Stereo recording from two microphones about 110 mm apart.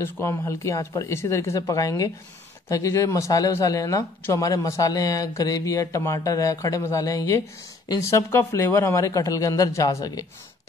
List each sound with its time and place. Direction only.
0.0 s speech: 25° left (ahead or behind)